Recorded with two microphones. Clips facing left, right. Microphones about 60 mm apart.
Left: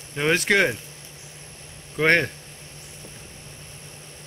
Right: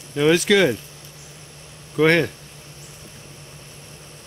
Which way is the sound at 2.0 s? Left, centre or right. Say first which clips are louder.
Right 4 dB; left.